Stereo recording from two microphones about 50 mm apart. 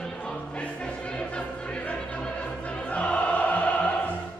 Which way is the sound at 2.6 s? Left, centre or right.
Left.